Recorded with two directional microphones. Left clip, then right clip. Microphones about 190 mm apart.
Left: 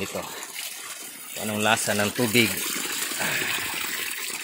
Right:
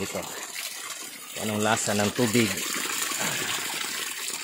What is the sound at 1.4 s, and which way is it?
Speech, 15° right (ahead or behind).